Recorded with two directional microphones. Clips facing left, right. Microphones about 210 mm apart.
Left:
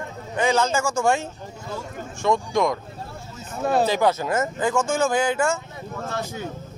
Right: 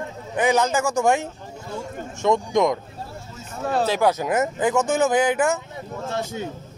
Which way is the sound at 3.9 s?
10° right (ahead or behind).